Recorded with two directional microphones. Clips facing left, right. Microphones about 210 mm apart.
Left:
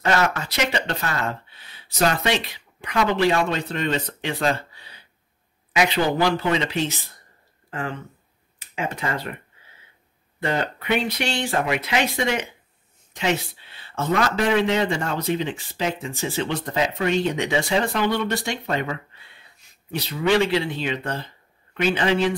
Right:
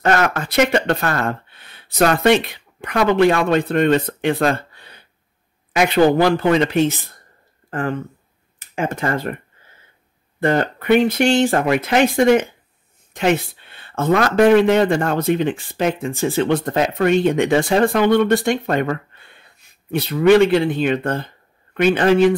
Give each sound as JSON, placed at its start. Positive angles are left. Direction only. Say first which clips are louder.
{"t": 0.0, "sound": "speech", "louder": "right 4 dB", "side_deg": -55}
{"t": 10.4, "sound": "speech", "louder": "right 7 dB", "side_deg": -50}